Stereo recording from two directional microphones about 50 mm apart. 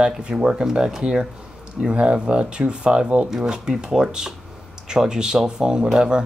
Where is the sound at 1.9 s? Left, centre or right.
Centre.